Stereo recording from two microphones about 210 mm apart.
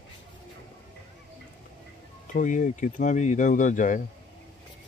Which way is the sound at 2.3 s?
40° left (ahead or behind).